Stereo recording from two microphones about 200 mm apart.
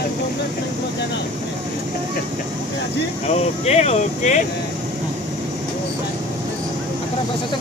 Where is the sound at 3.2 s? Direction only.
30° left (ahead or behind).